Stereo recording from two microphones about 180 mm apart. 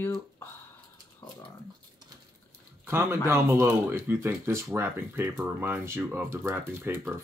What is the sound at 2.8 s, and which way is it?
Speech, 15° right (ahead or behind).